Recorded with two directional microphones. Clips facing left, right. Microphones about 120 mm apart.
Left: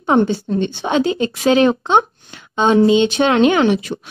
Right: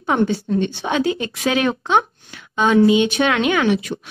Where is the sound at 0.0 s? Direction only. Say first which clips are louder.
Left 4 dB; 25° left (ahead or behind).